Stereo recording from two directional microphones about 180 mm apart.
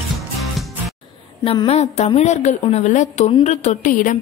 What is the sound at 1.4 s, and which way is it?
A woman's voice, 30° left (ahead or behind).